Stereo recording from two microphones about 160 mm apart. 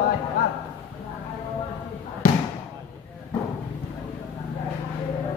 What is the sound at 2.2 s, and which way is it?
Basketball bounce, 60° left (ahead or behind).